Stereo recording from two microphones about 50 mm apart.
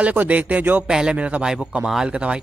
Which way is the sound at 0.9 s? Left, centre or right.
Centre.